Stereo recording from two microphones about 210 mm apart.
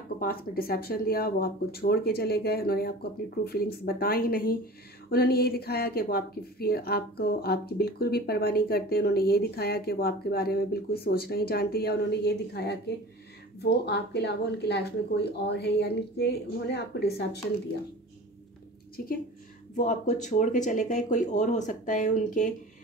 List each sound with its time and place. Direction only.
0.2 s speech: 45° left (ahead or behind)
19.7 s speech: 35° left (ahead or behind)